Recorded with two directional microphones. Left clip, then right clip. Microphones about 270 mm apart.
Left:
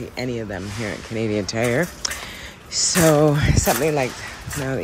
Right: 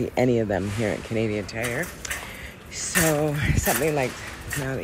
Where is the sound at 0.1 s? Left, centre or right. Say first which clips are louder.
Right 6 dB; centre.